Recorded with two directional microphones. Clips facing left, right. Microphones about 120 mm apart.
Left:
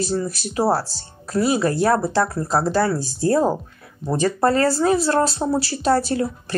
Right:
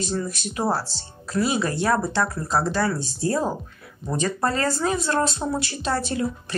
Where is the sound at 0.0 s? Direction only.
35° left (ahead or behind).